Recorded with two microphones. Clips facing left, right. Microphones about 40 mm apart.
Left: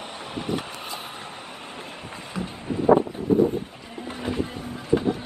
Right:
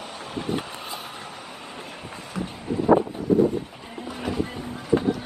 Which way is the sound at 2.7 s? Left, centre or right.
Left.